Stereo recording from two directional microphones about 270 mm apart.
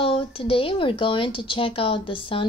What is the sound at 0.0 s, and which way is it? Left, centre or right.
Speech, centre.